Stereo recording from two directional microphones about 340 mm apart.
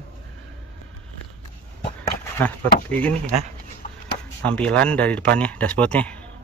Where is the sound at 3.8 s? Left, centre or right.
Left.